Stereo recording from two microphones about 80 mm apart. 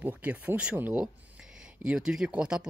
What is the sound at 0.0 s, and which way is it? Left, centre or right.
Speech, right.